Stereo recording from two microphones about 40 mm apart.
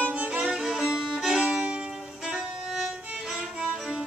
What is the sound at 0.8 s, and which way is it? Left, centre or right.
Music, centre.